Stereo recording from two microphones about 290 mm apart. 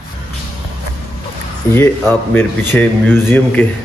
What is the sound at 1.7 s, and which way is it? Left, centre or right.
Speech, centre.